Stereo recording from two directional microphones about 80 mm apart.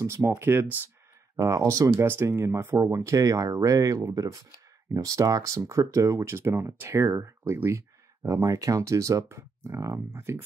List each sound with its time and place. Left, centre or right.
0.0 s speech: right
0.3 s speech: right
8.3 s speech: right